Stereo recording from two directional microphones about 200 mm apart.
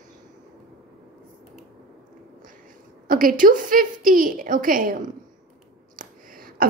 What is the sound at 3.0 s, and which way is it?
A woman's voice, 45° right (ahead or behind).